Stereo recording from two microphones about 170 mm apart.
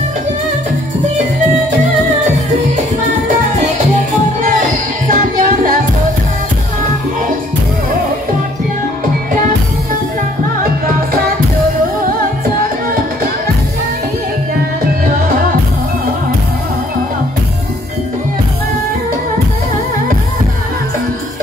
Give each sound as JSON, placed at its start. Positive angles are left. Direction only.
{"t": 4.6, "sound": "music", "side_deg": -55}
{"t": 12.0, "sound": "music", "side_deg": -55}